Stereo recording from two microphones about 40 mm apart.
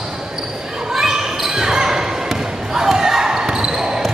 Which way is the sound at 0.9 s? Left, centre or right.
Centre.